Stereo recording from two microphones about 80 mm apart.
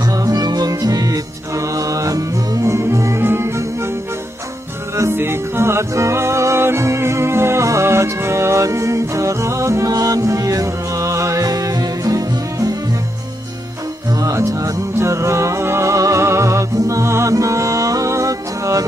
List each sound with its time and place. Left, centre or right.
0.0 s music: right
4.9 s music: right
14.1 s music: right